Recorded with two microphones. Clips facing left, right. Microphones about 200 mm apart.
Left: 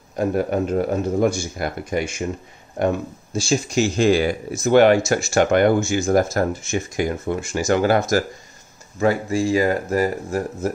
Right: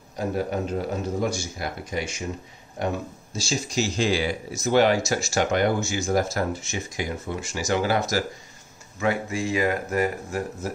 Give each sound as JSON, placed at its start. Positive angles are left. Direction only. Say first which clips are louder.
{"t": 0.1, "sound": "a man's voice", "louder": "left 6 dB", "side_deg": 55}
{"t": 9.0, "sound": "speech", "louder": "left 6 dB", "side_deg": 35}